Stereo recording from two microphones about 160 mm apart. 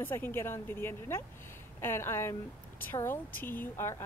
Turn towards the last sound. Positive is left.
turn(degrees=15)  # may be behind; listen again after turning